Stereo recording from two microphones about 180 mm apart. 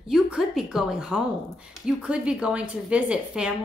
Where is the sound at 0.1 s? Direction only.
Centre (ahead or behind).